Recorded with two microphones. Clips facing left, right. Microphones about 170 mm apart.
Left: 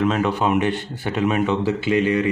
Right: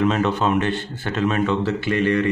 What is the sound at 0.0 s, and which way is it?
Speech, 5° left (ahead or behind).